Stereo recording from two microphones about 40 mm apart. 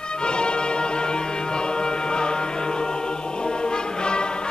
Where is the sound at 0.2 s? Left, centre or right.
Left.